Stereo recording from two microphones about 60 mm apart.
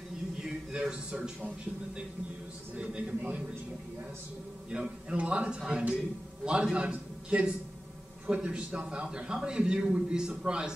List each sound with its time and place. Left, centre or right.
0.4 s a sound: centre
2.7 s a man's voice: centre
4.7 s a man's voice: centre